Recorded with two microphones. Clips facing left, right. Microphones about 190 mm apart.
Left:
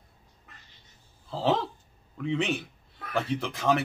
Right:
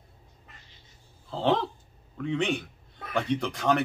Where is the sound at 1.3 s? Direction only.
5° left (ahead or behind).